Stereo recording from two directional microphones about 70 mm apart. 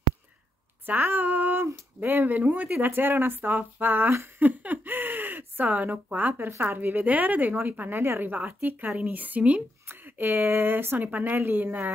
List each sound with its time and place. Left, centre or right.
0.8 s speech: right